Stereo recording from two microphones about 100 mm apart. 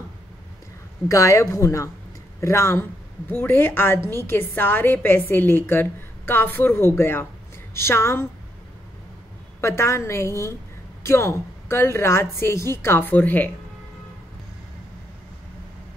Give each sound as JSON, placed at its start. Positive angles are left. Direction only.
{"t": 1.0, "sound": "a woman's voice", "side_deg": 30}
{"t": 9.6, "sound": "a woman's voice", "side_deg": 30}